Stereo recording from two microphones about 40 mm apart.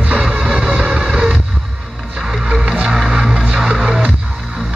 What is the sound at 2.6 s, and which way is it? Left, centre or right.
Music, right.